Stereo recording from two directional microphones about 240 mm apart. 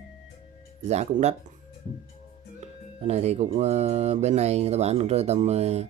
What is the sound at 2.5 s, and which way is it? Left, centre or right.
Speech, right.